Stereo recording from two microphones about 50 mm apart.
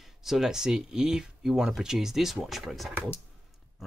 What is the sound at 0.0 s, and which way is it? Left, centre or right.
Speech, centre.